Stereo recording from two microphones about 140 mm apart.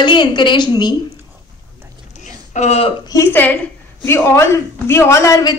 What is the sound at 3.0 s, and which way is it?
A woman's voice, 20° left (ahead or behind).